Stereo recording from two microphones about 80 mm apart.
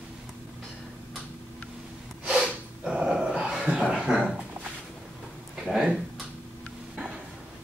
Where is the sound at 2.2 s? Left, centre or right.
Centre.